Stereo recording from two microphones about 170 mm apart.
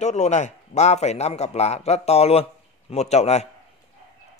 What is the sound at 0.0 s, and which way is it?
A man's voice, 40° left (ahead or behind).